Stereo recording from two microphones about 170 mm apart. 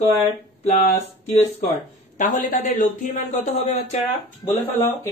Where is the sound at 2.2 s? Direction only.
50° left (ahead or behind).